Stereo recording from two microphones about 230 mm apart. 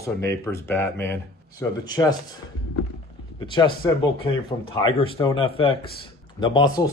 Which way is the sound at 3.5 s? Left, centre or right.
Left.